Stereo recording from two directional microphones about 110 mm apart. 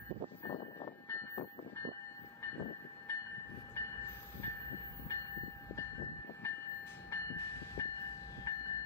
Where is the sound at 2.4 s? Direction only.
20° left (ahead or behind).